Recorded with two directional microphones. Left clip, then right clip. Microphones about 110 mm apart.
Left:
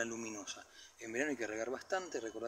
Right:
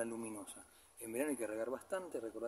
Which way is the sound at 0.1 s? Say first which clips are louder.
Left 3 dB; 25° right (ahead or behind).